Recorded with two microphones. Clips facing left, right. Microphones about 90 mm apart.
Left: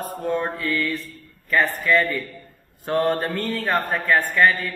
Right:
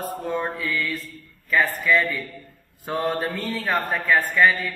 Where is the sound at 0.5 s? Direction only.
50° left (ahead or behind).